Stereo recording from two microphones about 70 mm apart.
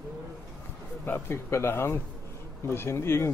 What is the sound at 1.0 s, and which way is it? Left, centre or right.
Speech, left.